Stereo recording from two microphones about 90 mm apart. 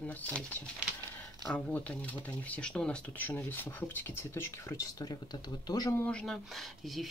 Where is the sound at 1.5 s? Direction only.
15° left (ahead or behind); by 4.8 s 30° left (ahead or behind).